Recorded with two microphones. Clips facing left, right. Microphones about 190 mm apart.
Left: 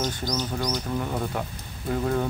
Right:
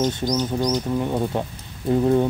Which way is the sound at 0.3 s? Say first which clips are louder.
Right 6 dB; 20° right (ahead or behind).